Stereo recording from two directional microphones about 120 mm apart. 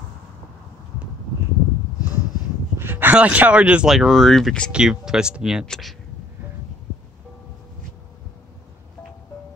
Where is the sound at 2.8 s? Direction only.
15° right (ahead or behind); by 4.7 s 5° left (ahead or behind).